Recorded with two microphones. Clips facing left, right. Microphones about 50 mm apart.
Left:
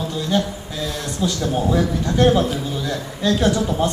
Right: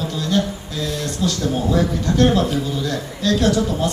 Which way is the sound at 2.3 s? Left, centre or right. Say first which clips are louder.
Left 1 dB; centre.